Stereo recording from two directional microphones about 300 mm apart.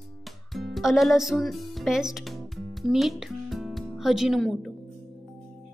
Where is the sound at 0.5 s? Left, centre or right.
Centre.